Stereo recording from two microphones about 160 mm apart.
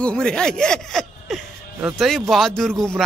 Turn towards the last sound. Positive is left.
turn(degrees=0)  # may be behind; listen again after turning